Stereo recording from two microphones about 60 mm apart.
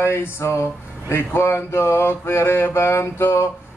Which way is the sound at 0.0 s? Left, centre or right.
Left.